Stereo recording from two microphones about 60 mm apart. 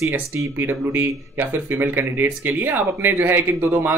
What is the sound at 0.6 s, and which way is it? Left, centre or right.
Speech, right.